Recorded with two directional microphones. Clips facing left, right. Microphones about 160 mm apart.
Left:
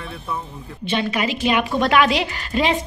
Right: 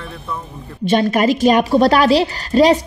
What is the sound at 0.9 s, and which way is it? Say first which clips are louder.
A woman's voice: right 8 dB; 45° right (ahead or behind).